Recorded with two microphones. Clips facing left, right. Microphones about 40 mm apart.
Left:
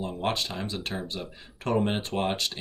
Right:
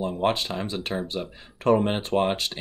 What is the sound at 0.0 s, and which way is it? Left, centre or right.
Speech, centre.